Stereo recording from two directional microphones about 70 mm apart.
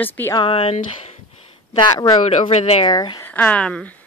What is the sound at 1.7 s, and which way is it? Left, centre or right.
Speech, left.